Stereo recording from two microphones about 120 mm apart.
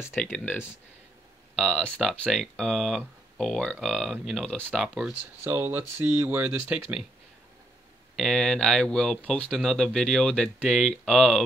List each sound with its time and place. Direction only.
0.2 s speech: 10° left (ahead or behind)
4.8 s speech: 5° right (ahead or behind)
5.4 s speech: 20° right (ahead or behind)
8.2 s speech: 5° left (ahead or behind)